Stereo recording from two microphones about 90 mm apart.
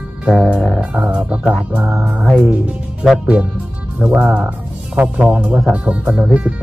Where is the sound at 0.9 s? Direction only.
15° right (ahead or behind).